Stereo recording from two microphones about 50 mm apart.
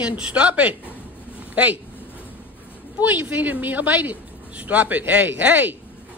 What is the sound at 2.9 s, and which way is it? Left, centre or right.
A woman's voice, right.